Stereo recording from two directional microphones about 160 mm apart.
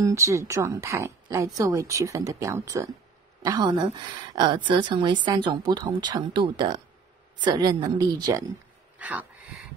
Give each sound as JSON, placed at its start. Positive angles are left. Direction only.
{"t": 0.0, "sound": "a woman's voice", "side_deg": -20}
{"t": 8.9, "sound": "wheeze", "side_deg": -10}